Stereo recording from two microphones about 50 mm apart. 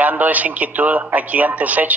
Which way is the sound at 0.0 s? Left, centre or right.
Right.